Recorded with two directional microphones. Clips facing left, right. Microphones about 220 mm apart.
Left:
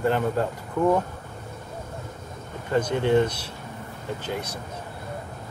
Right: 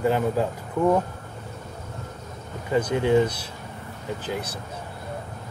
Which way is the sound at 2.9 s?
5° right (ahead or behind).